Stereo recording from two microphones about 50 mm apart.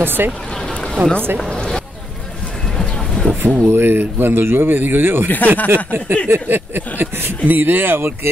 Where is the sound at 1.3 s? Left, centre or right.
Centre.